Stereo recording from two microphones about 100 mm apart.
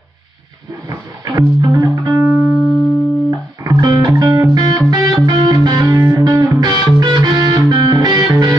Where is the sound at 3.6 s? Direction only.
45° right (ahead or behind).